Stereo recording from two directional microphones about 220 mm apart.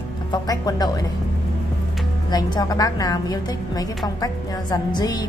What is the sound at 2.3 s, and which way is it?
A woman's voice, 20° left (ahead or behind).